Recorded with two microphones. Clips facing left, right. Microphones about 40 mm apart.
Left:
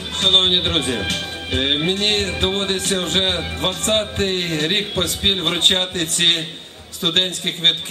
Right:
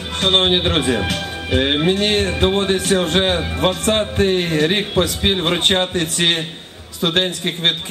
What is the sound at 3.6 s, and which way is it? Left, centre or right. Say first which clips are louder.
A man's voice: right 3 dB; centre.